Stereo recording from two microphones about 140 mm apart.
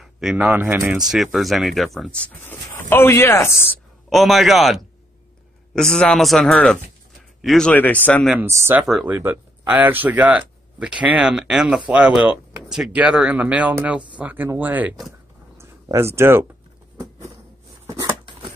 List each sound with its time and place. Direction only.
0.0 s speech: centre (ahead or behind)
0.6 s speech: 15° right (ahead or behind)
0.9 s speech: centre (ahead or behind); by 3.7 s 20° left (ahead or behind)
4.1 s speech: centre (ahead or behind)
8.4 s speech: 20° right (ahead or behind)
15.5 s a sound: 20° right (ahead or behind)